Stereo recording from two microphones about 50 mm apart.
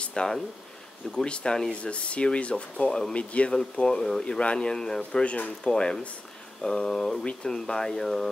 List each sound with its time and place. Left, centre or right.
0.0 s a sound: centre
1.1 s speech: centre
3.8 s speech: centre
5.2 s speech: left
5.7 s speech: centre